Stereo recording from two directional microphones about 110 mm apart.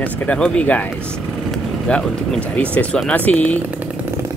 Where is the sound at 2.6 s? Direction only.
10° left (ahead or behind).